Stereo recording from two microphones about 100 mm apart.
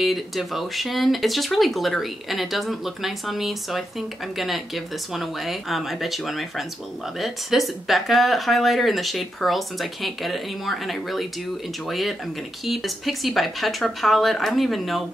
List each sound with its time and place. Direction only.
0.0 s speech: centre (ahead or behind)